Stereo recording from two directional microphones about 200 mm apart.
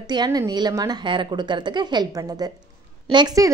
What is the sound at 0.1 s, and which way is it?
A woman's voice, 20° right (ahead or behind).